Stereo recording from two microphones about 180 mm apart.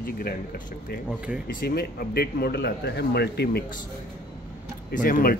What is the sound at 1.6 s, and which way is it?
A man's voice, 55° left (ahead or behind).